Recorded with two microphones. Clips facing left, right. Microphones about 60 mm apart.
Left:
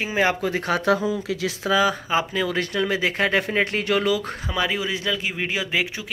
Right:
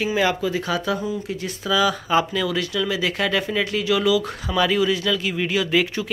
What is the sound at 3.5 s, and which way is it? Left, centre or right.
Speech, left.